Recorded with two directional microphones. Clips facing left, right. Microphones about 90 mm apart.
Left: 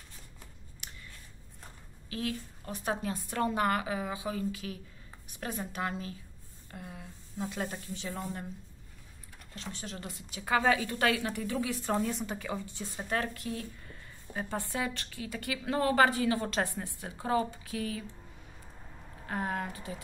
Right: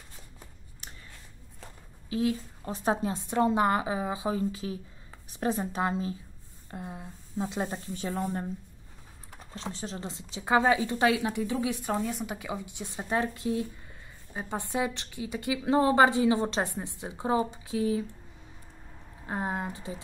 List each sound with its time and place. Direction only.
0.8 s a sound: 35° right (ahead or behind)
2.0 s speech: 25° right (ahead or behind)
7.9 s speech: 45° right (ahead or behind)
9.5 s speech: 30° right (ahead or behind)
11.9 s speech: 5° right (ahead or behind); by 18.0 s 20° right (ahead or behind)
19.2 s speech: 20° right (ahead or behind)